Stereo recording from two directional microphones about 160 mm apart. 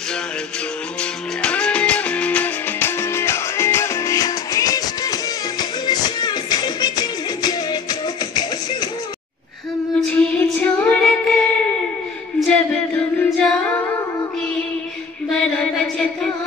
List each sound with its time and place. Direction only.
1.4 s music: 5° left (ahead or behind); by 8.7 s 25° left (ahead or behind)
9.9 s music: 5° left (ahead or behind)
12.4 s singing: 5° left (ahead or behind)
15.3 s a sound: 5° left (ahead or behind)